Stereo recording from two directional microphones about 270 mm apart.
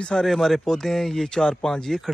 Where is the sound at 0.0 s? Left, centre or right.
Centre.